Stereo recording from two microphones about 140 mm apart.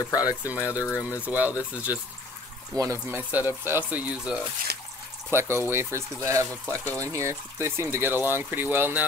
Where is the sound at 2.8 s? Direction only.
20° right (ahead or behind).